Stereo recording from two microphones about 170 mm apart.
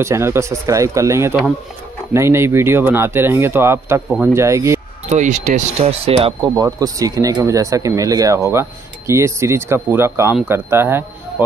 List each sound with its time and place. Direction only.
0.0 s speech: 15° right (ahead or behind)
5.1 s speech: 45° right (ahead or behind)
6.5 s speech: 20° right (ahead or behind)